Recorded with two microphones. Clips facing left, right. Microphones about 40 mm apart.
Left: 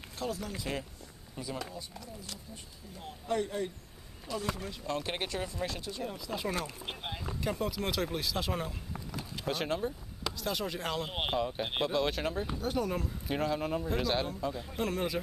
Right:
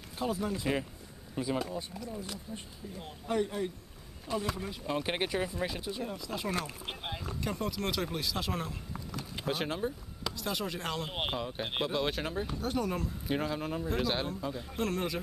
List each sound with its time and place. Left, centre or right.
0.2 s speech: right
3.0 s speech: centre
6.0 s speech: centre
9.5 s speech: centre